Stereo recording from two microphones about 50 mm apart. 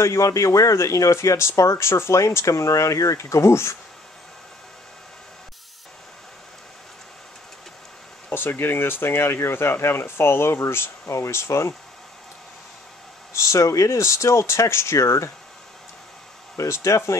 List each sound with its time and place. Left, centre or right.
0.0 s speech: left
1.6 s speech: left
8.3 s speech: left
13.3 s speech: left
16.5 s speech: left